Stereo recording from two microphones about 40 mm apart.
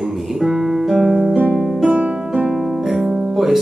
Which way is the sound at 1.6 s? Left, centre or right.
Centre.